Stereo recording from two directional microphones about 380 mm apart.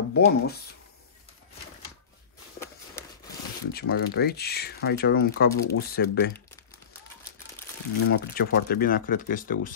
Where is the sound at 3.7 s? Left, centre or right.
Left.